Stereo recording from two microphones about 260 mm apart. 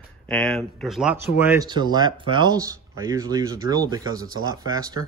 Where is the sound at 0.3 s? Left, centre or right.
Centre.